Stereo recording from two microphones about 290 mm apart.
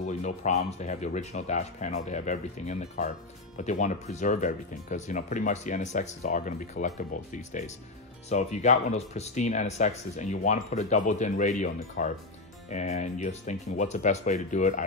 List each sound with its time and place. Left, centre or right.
0.0 s speech: left